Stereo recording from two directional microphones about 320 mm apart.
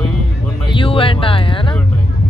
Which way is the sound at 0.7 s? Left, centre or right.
Centre.